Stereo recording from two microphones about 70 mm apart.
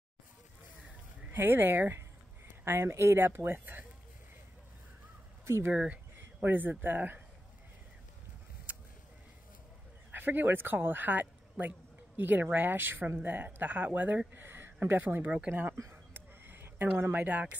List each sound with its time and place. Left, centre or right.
1.3 s speech: right
5.4 s speech: right
5.7 s speech: centre
6.1 s speech: right
8.7 s a sound: right
10.1 s speech: right
15.8 s a sound: right